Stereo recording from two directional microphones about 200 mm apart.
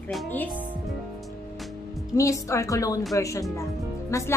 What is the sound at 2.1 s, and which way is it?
A woman's voice, 15° left (ahead or behind).